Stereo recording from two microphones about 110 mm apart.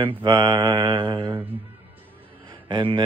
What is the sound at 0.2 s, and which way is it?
Mantra, 40° right (ahead or behind).